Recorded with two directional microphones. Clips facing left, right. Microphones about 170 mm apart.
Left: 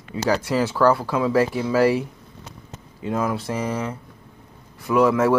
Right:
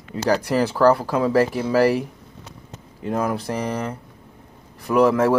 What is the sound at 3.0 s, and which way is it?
Speech, 45° right (ahead or behind).